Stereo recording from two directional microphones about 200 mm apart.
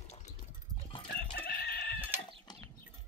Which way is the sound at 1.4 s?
50° left (ahead or behind).